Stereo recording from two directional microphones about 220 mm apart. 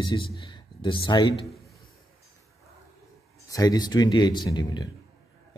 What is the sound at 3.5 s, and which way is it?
Speech, 15° left (ahead or behind).